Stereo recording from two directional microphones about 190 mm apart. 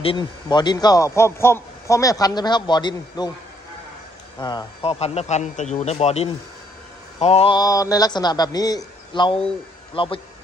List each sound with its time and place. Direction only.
0.0 s a man's voice: 25° left (ahead or behind)
4.4 s a man's voice: 20° left (ahead or behind)